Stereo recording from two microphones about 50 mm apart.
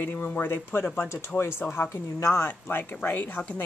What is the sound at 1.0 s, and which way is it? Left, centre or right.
Speech, left.